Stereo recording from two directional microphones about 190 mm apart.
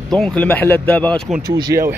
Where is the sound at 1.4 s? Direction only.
20° right (ahead or behind).